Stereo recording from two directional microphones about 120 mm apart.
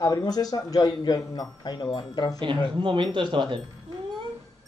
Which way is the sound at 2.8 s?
40° right (ahead or behind).